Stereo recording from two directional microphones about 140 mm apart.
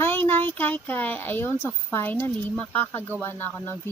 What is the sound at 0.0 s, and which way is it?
Speech, 15° left (ahead or behind).